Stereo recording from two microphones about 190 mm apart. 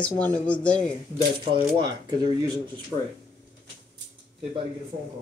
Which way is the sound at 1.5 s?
20° right (ahead or behind).